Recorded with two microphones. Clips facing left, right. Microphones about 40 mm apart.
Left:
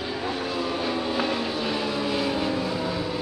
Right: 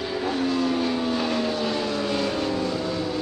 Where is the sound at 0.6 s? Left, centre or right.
Centre.